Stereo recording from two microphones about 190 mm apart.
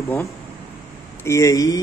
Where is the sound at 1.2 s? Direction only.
15° left (ahead or behind).